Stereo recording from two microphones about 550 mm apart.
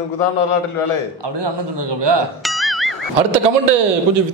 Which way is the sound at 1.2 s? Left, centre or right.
Right.